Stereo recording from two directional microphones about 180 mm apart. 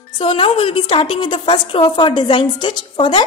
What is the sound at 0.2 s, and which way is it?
A woman's voice, 30° left (ahead or behind).